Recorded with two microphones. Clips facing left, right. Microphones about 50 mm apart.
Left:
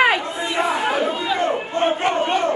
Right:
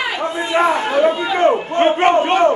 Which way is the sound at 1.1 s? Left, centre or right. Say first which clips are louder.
Right 4 dB; centre.